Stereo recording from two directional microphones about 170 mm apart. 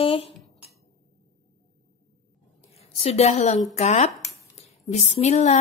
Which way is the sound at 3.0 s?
40° left (ahead or behind).